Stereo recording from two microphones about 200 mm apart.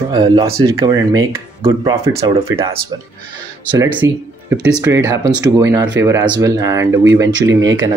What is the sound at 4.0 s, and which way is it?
Speech, 10° right (ahead or behind).